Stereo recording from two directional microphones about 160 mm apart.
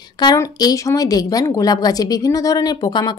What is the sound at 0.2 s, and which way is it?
Speech, 25° left (ahead or behind).